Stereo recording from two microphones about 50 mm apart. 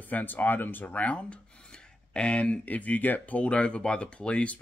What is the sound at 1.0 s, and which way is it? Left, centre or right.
Speech, left.